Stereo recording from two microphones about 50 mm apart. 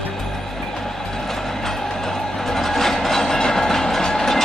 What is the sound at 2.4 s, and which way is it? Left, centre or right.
Train, centre.